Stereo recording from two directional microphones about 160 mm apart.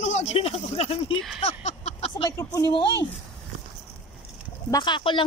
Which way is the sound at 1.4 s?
45° left (ahead or behind).